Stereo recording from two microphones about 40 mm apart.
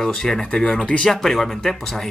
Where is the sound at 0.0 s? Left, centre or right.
Centre.